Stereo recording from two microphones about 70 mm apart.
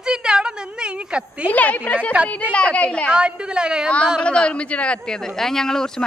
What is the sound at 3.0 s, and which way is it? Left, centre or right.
Speech, centre.